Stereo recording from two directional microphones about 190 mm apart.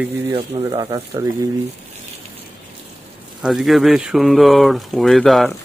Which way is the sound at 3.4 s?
Centre (ahead or behind).